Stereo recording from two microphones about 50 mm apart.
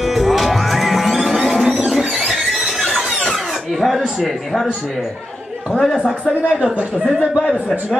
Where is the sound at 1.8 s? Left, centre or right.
Centre.